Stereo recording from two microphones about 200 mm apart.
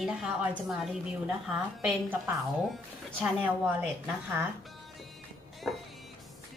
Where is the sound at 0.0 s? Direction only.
5° right (ahead or behind).